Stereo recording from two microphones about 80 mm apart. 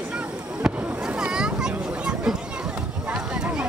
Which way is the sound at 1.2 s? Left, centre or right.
Centre.